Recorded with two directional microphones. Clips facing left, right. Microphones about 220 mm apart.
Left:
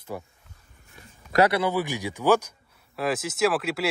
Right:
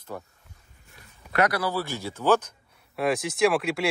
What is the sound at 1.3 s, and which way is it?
Speech, 30° left (ahead or behind).